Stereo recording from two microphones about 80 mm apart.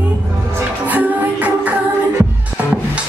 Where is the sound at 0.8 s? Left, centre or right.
Centre.